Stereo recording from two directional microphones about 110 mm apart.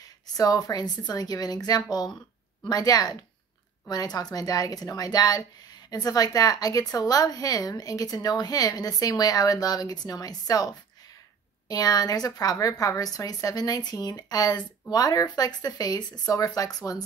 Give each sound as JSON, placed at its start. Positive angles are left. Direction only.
{"t": 0.0, "sound": "speech", "side_deg": 35}